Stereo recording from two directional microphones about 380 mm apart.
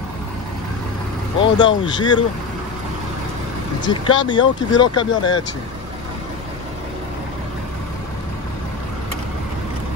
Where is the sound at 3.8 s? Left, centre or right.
Centre.